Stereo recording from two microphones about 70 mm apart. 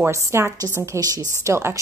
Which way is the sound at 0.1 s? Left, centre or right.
Right.